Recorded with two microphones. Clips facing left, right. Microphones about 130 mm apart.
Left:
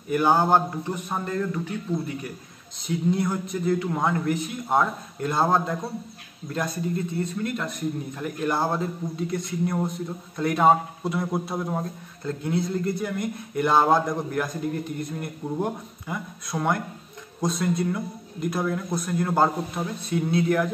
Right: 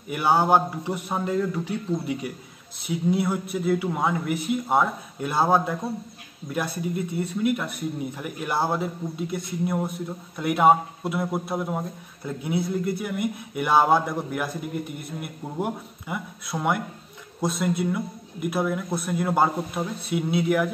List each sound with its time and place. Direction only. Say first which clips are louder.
0.1 s a man's voice: even; 10° right (ahead or behind)